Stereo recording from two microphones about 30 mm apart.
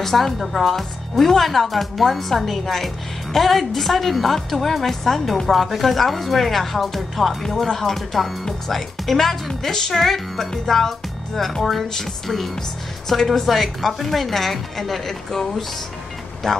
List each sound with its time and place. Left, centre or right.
0.0 s speech: centre
16.4 s speech: centre